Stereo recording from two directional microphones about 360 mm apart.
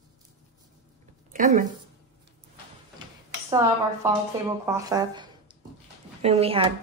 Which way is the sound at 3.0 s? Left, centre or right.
Centre.